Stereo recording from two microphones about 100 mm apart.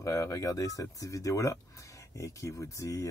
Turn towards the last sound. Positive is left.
turn(degrees=30)  # may be behind; listen again after turning